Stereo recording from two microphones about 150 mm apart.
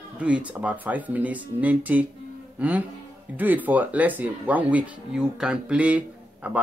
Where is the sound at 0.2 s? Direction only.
10° right (ahead or behind).